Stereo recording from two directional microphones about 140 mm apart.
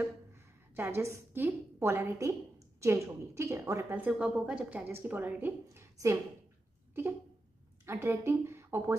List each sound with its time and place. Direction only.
0.0 s a woman's voice: 15° right (ahead or behind)
7.8 s a woman's voice: 20° right (ahead or behind)